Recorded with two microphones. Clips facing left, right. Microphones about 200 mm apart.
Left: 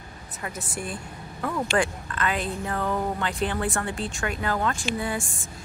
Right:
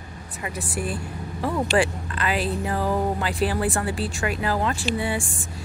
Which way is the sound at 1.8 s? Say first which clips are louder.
Right 3 dB; 5° right (ahead or behind).